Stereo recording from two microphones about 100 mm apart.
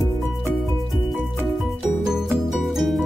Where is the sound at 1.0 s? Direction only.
Centre (ahead or behind).